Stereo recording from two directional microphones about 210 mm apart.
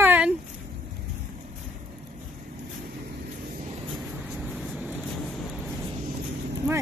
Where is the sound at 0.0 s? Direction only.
10° right (ahead or behind).